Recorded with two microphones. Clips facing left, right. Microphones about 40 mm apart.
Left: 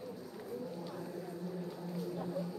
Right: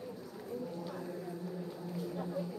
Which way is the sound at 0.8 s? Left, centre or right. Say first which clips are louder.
Right 1 dB; centre.